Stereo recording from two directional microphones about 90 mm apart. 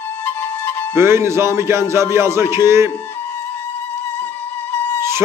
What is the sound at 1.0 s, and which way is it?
A man's voice, 30° right (ahead or behind).